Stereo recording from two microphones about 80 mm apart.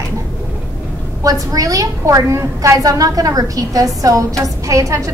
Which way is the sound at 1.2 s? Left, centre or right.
Right.